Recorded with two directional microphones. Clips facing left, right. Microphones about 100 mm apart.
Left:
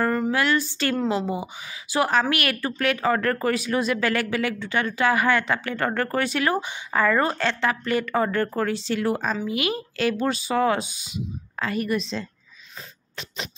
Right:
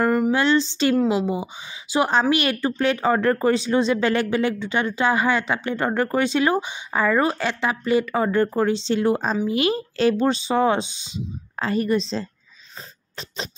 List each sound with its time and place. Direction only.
0.0 s a sound: 15° right (ahead or behind)
0.3 s speech: 25° right (ahead or behind)
0.9 s a woman's voice: 10° right (ahead or behind)
1.3 s speech: 20° right (ahead or behind)